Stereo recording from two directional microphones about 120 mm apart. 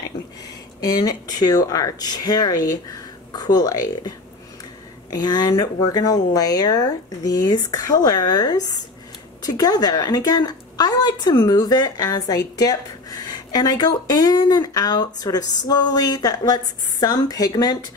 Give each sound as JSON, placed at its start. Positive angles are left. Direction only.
{"t": 0.7, "sound": "speech", "side_deg": 30}
{"t": 5.1, "sound": "speech", "side_deg": 35}